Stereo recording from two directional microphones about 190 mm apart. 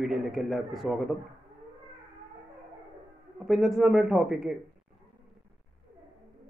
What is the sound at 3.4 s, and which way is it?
A man's voice, centre (ahead or behind).